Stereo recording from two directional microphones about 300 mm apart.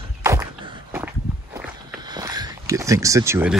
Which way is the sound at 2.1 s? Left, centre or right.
Centre.